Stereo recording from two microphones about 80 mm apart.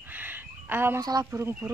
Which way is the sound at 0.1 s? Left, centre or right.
Right.